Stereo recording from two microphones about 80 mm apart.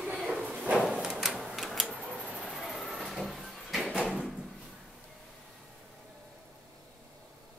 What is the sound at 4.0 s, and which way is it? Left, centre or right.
Drawer open or close, centre.